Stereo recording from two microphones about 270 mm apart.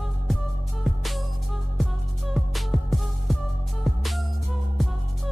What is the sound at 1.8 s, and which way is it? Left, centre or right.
Music, centre.